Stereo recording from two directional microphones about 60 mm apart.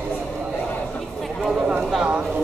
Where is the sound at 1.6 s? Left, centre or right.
Centre.